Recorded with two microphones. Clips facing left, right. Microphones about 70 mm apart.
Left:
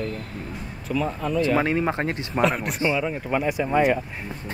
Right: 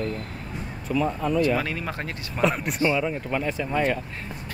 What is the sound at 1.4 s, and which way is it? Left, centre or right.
Speech, left.